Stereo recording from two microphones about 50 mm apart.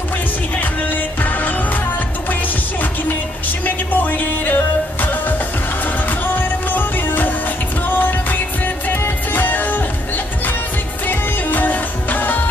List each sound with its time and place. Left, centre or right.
0.6 s music: left
3.6 s music: left
6.0 s music: left